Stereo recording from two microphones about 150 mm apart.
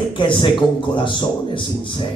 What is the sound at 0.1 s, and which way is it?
Speech, 35° left (ahead or behind).